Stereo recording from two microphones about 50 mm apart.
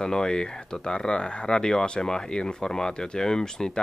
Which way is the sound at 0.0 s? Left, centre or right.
Centre.